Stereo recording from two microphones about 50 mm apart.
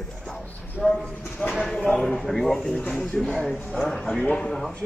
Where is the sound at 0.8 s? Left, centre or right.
Left.